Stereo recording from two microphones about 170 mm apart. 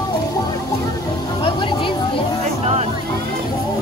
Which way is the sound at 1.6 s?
30° left (ahead or behind).